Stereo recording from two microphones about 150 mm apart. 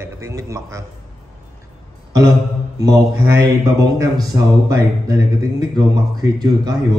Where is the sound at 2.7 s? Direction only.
25° right (ahead or behind).